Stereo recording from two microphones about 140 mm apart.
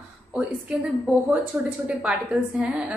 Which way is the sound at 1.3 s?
10° right (ahead or behind).